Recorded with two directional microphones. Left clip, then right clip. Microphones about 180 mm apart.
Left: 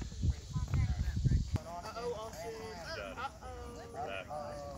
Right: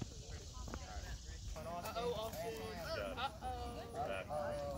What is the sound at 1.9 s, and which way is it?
Clip-clop, 60° right (ahead or behind).